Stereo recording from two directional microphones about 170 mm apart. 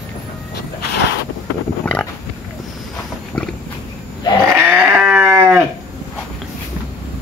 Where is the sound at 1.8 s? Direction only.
10° left (ahead or behind).